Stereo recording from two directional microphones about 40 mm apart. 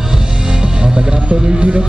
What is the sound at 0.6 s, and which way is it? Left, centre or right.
Music, right.